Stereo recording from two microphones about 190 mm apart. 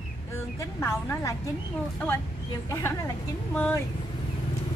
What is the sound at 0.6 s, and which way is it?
Speech, 15° left (ahead or behind).